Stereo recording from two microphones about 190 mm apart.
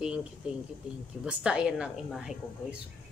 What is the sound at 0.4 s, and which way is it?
Speech, 5° right (ahead or behind).